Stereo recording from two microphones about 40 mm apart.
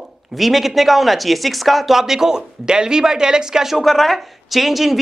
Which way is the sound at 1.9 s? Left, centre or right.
Centre.